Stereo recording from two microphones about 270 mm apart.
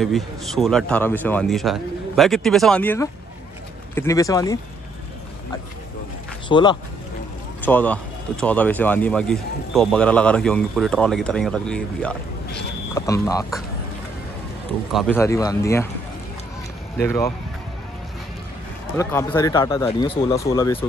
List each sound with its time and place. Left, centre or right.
0.0 s speech: centre
6.5 s speech: centre
7.6 s speech: centre
14.9 s speech: centre
17.0 s speech: centre
18.9 s speech: centre